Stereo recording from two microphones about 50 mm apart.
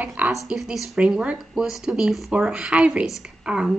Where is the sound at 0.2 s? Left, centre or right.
Right.